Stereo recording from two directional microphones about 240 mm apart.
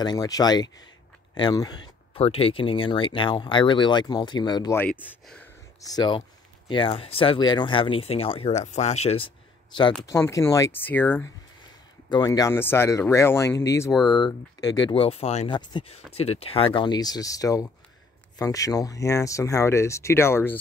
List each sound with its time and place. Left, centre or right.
0.0 s speech: centre
4.9 s speech: centre
5.8 s speech: centre
10.0 s speech: centre
13.9 s speech: centre
14.2 s speech: centre